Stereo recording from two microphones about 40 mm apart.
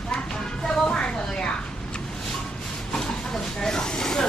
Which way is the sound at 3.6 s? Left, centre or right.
Centre.